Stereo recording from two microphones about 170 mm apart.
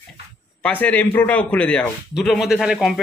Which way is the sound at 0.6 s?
10° left (ahead or behind).